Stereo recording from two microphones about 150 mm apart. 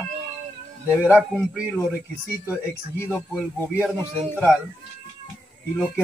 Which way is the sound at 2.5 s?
15° left (ahead or behind).